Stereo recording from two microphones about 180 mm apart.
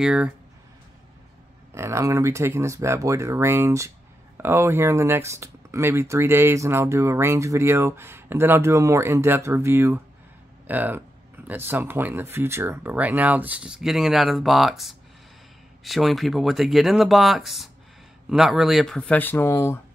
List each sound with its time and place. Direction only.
0.0 s speech: 5° right (ahead or behind)
1.7 s speech: 15° right (ahead or behind); by 19.8 s 15° left (ahead or behind)